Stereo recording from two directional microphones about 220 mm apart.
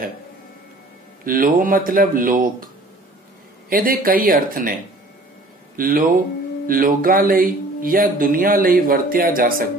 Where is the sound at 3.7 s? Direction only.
40° right (ahead or behind).